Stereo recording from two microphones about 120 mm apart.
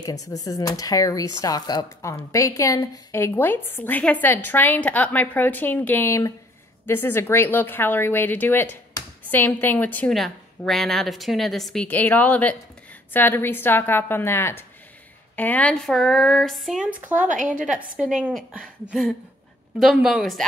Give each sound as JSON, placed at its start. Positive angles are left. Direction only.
{"t": 0.0, "sound": "speech", "side_deg": 30}
{"t": 10.1, "sound": "a woman's voice", "side_deg": 0}